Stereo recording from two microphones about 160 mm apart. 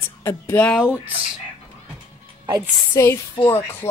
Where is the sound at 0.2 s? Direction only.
15° left (ahead or behind).